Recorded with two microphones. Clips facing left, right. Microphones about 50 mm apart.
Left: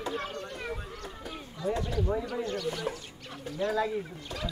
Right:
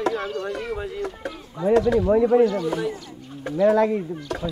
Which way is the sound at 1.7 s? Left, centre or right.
Right.